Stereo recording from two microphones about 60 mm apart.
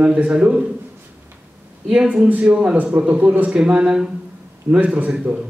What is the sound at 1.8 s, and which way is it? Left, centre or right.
A man's voice, centre.